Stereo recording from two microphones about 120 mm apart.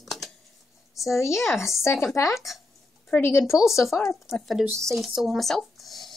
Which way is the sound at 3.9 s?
25° left (ahead or behind).